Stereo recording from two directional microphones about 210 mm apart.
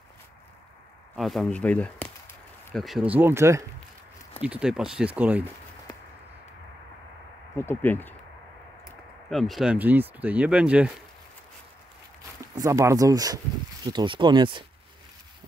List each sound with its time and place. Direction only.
1.1 s speech: centre (ahead or behind)
7.5 s speech: 10° left (ahead or behind)
9.3 s speech: centre (ahead or behind)
12.4 s speech: 15° right (ahead or behind)